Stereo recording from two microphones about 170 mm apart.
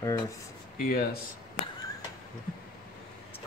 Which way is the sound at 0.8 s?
60° left (ahead or behind).